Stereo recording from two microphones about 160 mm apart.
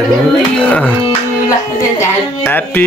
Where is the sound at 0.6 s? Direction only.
10° left (ahead or behind).